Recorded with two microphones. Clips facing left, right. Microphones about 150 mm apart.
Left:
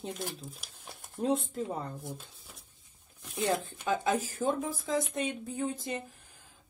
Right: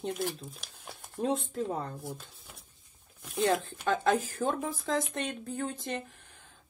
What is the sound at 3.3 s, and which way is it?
Speech, 5° left (ahead or behind).